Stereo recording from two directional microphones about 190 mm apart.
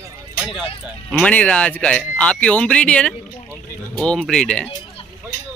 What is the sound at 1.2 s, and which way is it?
Speech, 5° left (ahead or behind).